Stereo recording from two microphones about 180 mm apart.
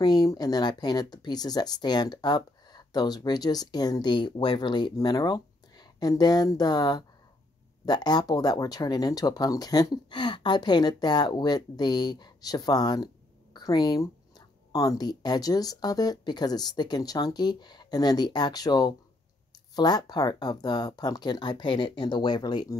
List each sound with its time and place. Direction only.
0.0 s speech: 20° left (ahead or behind)